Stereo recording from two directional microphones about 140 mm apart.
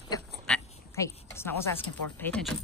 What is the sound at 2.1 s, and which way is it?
Speech, 10° left (ahead or behind).